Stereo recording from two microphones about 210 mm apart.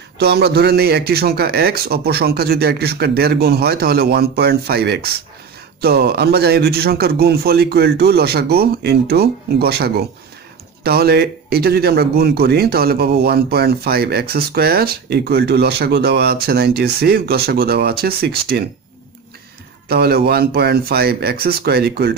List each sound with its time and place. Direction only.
0.2 s speech: 50° right (ahead or behind)
19.9 s speech: 50° right (ahead or behind)